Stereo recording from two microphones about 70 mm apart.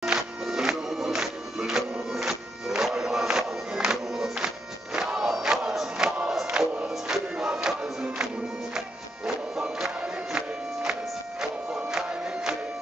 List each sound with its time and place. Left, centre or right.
0.0 s music: centre
4.9 s crowd: centre
6.3 s music: centre